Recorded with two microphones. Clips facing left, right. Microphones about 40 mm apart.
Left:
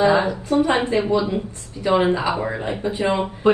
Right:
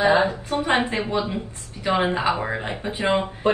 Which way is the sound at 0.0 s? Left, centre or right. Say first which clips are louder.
Left 1 dB; right.